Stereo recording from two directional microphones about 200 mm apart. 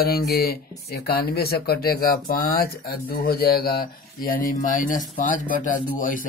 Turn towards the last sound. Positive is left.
turn(degrees=45)  # may be behind; listen again after turning